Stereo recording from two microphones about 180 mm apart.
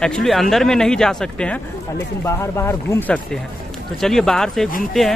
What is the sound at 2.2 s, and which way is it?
Speech, 15° left (ahead or behind).